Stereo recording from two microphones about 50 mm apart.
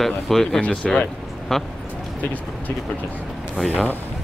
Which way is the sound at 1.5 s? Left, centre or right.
Centre.